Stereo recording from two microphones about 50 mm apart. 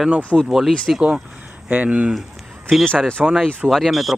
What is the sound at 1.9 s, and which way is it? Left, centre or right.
Speech, right.